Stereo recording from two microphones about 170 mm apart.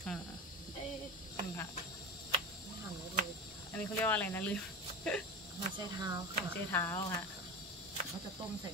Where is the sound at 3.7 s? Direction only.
10° left (ahead or behind).